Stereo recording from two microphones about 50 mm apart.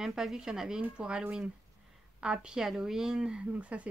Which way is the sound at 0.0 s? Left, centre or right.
Centre.